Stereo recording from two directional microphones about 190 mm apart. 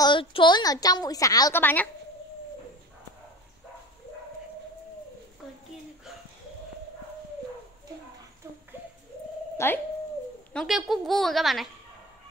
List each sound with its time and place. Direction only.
0.0 s a woman's voice: 25° left (ahead or behind); by 1.9 s 10° left (ahead or behind)
9.6 s speech: 15° left (ahead or behind)
10.5 s a woman's voice: centre (ahead or behind)